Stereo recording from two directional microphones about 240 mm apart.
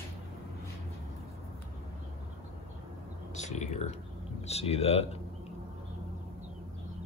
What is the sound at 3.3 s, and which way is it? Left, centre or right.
A man's voice, left.